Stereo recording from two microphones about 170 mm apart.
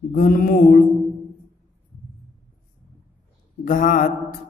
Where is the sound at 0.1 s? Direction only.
55° left (ahead or behind).